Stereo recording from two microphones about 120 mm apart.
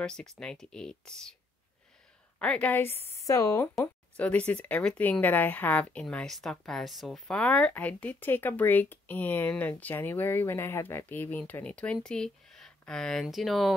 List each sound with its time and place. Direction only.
0.0 s speech: 5° left (ahead or behind)
2.3 s speech: 10° left (ahead or behind)
3.1 s speech: 25° left (ahead or behind)
3.8 s speech: 10° left (ahead or behind)